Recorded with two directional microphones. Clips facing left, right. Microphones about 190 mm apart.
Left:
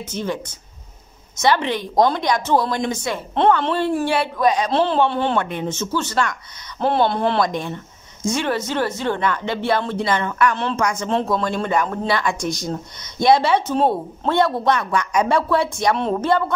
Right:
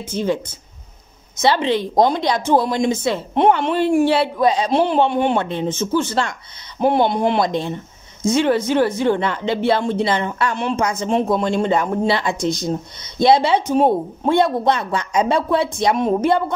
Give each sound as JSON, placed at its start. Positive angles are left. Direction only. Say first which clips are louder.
{"t": 1.4, "sound": "speech", "louder": "right 2 dB", "side_deg": -20}